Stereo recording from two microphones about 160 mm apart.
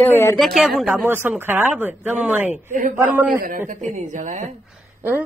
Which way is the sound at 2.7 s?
55° right (ahead or behind).